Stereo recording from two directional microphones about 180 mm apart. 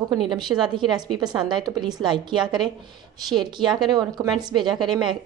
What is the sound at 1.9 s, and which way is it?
A woman's voice, 25° right (ahead or behind).